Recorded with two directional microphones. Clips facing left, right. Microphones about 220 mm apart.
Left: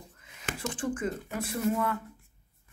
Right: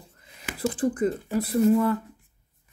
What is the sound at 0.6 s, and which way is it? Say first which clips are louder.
Speech: right 8 dB; 35° right (ahead or behind).